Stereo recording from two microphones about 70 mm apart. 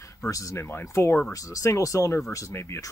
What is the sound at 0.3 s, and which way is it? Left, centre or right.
Speech, left.